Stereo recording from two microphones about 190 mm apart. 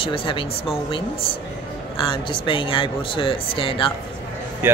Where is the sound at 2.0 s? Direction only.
25° left (ahead or behind).